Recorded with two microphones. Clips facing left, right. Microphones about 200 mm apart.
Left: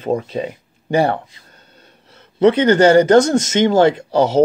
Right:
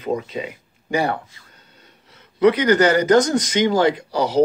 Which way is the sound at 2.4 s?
25° left (ahead or behind).